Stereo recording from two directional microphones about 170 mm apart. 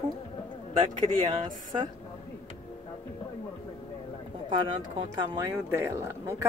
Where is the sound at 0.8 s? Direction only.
25° right (ahead or behind).